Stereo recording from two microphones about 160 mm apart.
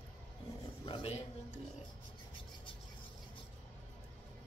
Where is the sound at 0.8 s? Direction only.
35° left (ahead or behind).